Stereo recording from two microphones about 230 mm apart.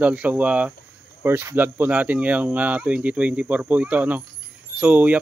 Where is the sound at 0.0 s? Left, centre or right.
Centre.